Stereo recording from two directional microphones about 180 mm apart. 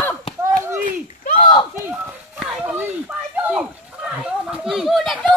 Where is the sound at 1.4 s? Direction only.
30° left (ahead or behind).